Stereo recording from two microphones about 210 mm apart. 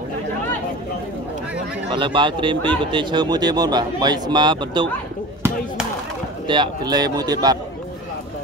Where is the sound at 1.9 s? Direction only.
25° right (ahead or behind).